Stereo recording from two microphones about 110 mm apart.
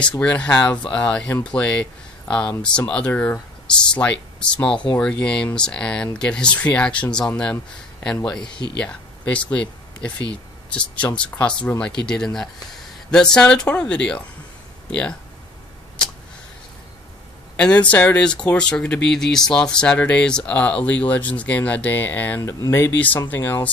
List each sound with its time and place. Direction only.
0.2 s speech: 10° left (ahead or behind)
3.1 s speech: 10° left (ahead or behind)
17.6 s speech: 10° left (ahead or behind)
22.4 s speech: 30° left (ahead or behind)